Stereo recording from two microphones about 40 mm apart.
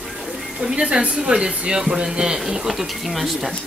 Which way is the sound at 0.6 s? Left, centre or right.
Centre.